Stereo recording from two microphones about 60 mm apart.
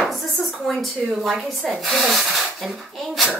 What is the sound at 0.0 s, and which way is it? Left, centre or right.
Speech, centre.